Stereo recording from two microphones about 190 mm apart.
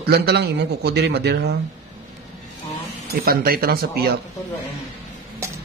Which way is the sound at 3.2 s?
50° right (ahead or behind).